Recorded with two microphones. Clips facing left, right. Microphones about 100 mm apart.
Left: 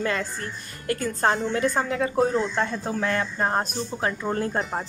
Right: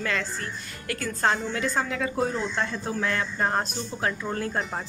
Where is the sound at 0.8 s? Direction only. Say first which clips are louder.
Left 3 dB; 40° left (ahead or behind); by 4.3 s 20° left (ahead or behind).